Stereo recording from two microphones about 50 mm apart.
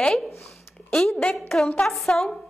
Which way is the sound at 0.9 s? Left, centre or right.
Centre.